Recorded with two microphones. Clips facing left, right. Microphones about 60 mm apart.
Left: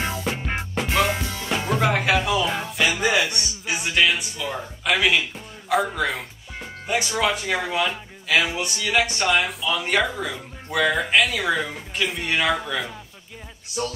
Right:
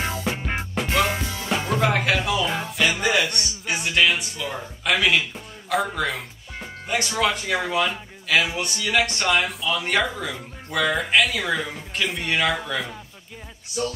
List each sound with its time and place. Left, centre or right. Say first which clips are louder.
0.0 s music: even; centre
5.7 s speech: left 2 dB; centre